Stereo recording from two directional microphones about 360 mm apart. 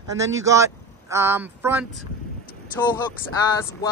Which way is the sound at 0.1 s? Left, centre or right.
Right.